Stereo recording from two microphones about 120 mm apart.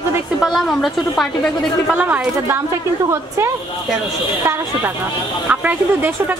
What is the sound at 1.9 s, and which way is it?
A woman's voice, 15° right (ahead or behind).